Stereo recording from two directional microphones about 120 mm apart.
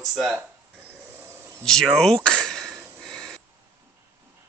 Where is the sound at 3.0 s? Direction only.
5° left (ahead or behind).